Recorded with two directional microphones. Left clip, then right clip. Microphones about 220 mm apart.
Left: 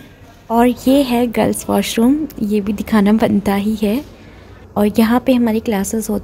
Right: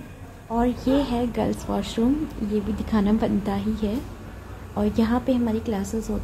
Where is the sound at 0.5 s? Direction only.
45° left (ahead or behind).